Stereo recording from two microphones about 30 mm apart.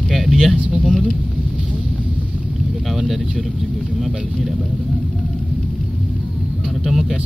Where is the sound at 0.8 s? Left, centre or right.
Centre.